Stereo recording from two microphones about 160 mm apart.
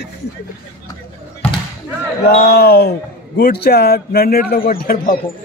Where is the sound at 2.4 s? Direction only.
80° left.